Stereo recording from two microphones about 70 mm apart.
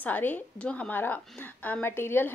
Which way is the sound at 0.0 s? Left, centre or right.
Left.